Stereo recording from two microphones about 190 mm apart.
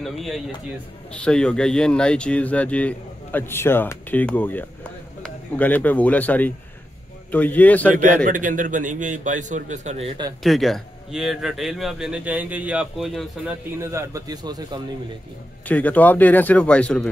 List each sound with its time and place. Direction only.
0.0 s a man's voice: centre (ahead or behind)
8.3 s a man's voice: 45° right (ahead or behind); by 10.3 s 25° right (ahead or behind)
10.4 s a man's voice: centre (ahead or behind)
13.7 s a man's voice: 15° right (ahead or behind)
15.7 s speech: 10° left (ahead or behind)